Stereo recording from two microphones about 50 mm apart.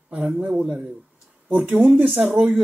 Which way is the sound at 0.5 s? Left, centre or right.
Centre.